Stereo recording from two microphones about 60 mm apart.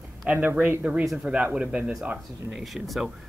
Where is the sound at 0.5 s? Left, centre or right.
Right.